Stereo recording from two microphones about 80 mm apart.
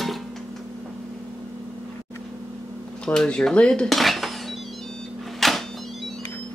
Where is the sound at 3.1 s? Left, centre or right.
Centre.